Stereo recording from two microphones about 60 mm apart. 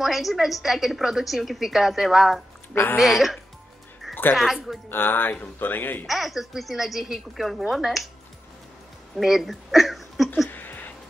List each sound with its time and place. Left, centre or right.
0.0 s a woman's voice: centre
2.7 s a woman's voice: left
3.0 s a woman's voice: centre
4.1 s music: left
4.8 s speech: left
6.0 s a woman's voice: centre
9.1 s a sound: centre
10.5 s a sound: left